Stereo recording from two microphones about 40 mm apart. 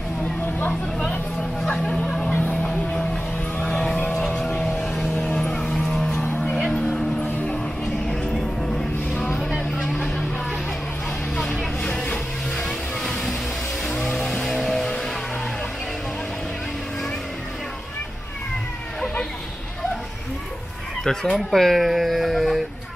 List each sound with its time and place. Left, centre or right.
1.9 s a sound: left
2.6 s music: centre
3.5 s vehicle: left
5.5 s music: centre
8.1 s music: centre
9.1 s vehicle: left
11.8 s music: left
12.5 s vehicle: centre
13.8 s vehicle: left
14.4 s music: centre
21.0 s fowl: centre
21.4 s speech: centre